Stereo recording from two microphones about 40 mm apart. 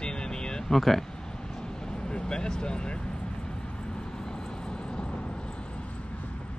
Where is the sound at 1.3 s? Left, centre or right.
Centre.